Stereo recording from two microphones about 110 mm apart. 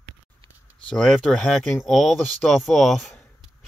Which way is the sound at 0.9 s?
5° left (ahead or behind).